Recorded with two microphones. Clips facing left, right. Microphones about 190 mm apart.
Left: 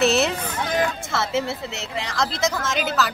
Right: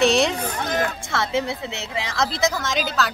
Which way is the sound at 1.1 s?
Centre (ahead or behind).